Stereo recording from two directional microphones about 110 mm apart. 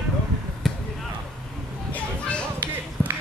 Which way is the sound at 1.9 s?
10° left (ahead or behind).